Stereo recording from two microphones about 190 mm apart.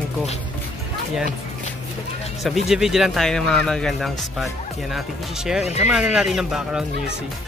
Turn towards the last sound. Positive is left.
turn(degrees=0)  # may be behind; listen again after turning